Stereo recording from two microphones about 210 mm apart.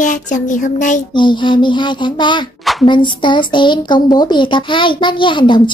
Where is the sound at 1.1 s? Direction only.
20° left (ahead or behind).